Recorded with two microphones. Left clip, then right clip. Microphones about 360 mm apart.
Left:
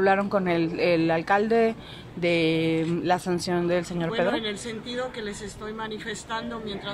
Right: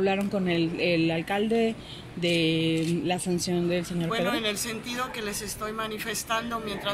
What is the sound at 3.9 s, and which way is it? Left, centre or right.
Speech, left.